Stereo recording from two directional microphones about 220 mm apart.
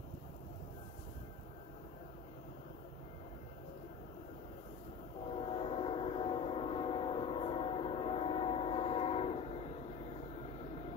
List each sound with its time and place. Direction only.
5.3 s train: 25° left (ahead or behind)